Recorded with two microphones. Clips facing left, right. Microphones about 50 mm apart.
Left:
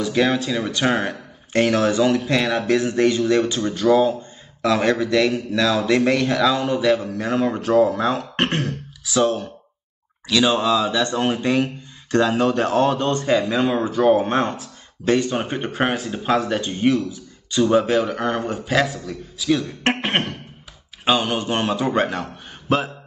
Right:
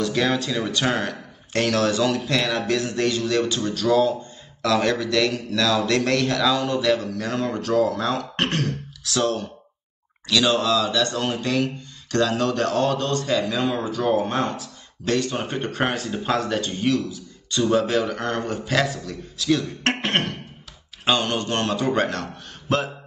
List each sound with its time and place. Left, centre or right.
0.0 s speech: centre
16.8 s speech: left
17.5 s a man's voice: centre